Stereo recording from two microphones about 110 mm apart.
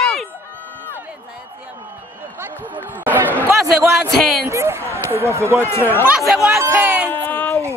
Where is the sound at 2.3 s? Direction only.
15° right (ahead or behind).